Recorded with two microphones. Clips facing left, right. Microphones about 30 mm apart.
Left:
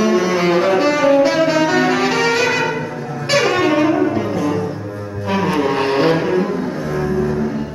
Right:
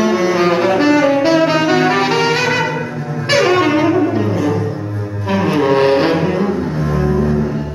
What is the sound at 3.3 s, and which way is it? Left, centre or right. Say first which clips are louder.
Saxophone: right 2 dB; centre.